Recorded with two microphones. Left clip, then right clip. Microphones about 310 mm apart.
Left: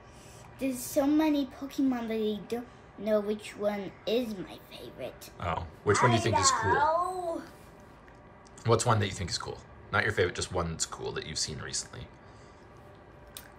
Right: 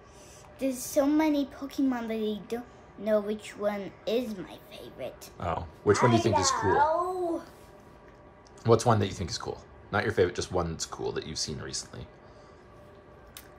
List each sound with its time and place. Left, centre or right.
0.6 s a woman's voice: centre
5.4 s speech: centre
8.6 s speech: centre